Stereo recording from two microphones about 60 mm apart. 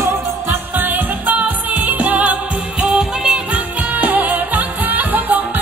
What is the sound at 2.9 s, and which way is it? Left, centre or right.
Music, centre.